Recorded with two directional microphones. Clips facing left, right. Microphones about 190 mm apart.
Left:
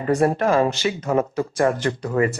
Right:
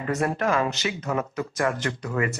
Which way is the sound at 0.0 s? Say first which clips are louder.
Left 6 dB; 30° left (ahead or behind).